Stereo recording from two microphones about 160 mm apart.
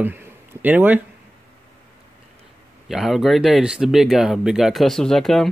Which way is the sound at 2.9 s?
Centre (ahead or behind).